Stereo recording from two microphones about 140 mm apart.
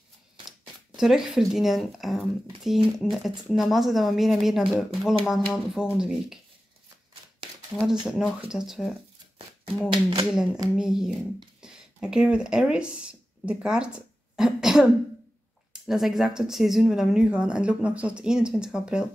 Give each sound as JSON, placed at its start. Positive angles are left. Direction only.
{"t": 0.5, "sound": "speech", "side_deg": 0}
{"t": 7.7, "sound": "speech", "side_deg": 0}
{"t": 9.8, "sound": "speech", "side_deg": -35}
{"t": 10.3, "sound": "speech", "side_deg": -5}